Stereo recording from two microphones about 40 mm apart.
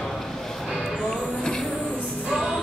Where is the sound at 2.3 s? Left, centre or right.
Centre.